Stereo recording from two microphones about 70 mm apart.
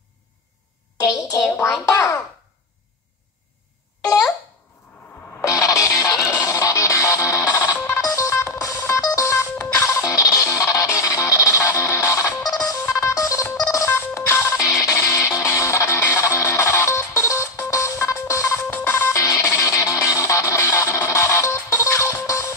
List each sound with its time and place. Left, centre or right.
1.9 s a sound: left
5.4 s music: left
14.7 s music: left
19.2 s music: left